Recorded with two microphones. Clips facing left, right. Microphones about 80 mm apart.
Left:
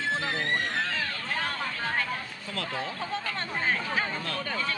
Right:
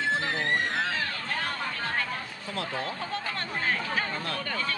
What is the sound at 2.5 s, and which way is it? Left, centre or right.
Speech, centre.